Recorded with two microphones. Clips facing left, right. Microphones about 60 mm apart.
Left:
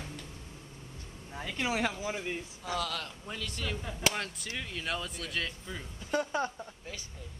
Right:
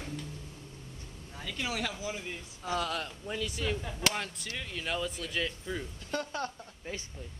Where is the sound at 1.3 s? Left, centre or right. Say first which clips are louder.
Left 3 dB; left.